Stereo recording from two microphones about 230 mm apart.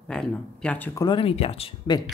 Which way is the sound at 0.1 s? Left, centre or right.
Centre.